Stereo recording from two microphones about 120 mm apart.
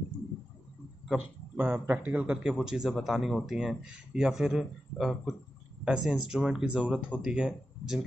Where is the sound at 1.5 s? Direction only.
15° right (ahead or behind).